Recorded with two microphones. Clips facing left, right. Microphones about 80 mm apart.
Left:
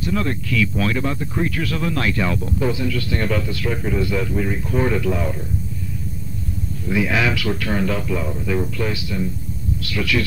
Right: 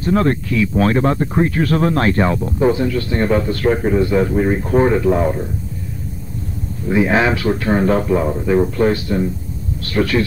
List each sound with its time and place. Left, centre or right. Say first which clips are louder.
0.0 s speech: right 7 dB; right
6.9 s speech: right 5 dB; right